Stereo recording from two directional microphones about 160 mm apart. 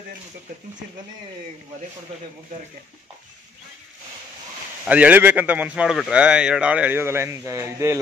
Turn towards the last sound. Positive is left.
turn(degrees=-15)  # may be behind; listen again after turning